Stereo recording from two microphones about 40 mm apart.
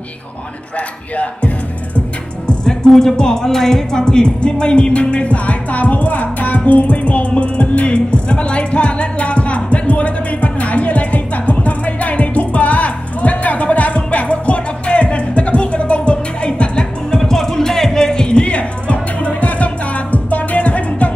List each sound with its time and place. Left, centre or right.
0.7 s speech: left
2.4 s music: centre
2.9 s speech: centre
3.2 s music: centre
17.2 s music: centre; by 21.1 s left